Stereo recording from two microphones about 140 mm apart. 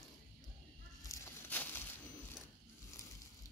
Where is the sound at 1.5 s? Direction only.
15° left (ahead or behind).